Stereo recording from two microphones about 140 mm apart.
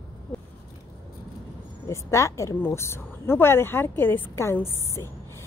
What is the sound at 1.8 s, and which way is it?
A woman's voice, 20° left (ahead or behind).